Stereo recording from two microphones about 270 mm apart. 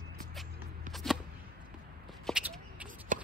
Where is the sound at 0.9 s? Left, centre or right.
Centre.